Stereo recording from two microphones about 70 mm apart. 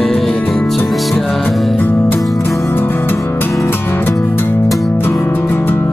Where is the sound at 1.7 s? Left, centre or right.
Left.